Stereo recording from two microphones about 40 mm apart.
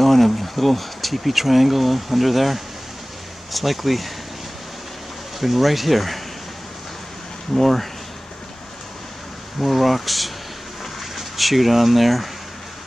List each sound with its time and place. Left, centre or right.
0.0 s speech: centre
5.4 s speech: centre
7.5 s speech: centre
9.6 s speech: centre